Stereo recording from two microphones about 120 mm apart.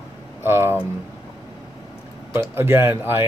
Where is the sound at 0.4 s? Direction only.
20° right (ahead or behind).